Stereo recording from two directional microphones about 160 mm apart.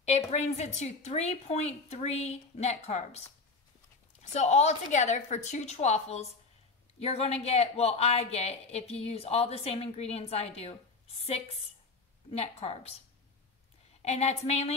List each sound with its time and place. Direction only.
0.0 s a woman's voice: 45° left (ahead or behind)
4.2 s a woman's voice: 45° left (ahead or behind)
12.3 s speech: 40° left (ahead or behind)
14.0 s a woman's voice: 45° left (ahead or behind)